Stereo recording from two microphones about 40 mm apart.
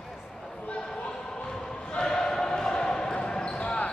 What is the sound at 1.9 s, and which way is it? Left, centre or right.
Basketball bounce, centre.